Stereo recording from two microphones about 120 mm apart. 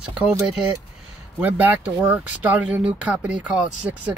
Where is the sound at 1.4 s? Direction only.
15° right (ahead or behind).